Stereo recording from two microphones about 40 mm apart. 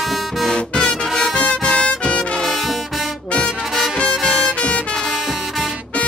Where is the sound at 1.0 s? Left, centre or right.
Centre.